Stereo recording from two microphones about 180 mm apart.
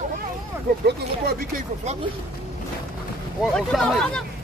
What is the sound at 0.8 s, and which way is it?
Speech, 55° right (ahead or behind).